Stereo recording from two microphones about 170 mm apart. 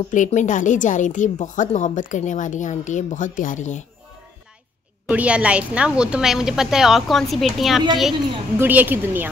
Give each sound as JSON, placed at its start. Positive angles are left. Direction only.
{"t": 0.1, "sound": "a woman's voice", "side_deg": 45}
{"t": 5.0, "sound": "a woman's voice", "side_deg": -5}
{"t": 8.5, "sound": "a woman's voice", "side_deg": -10}